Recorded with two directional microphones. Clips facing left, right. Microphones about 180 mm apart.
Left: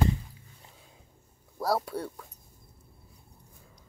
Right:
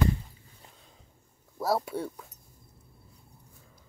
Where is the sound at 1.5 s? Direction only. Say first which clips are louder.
Even; centre (ahead or behind).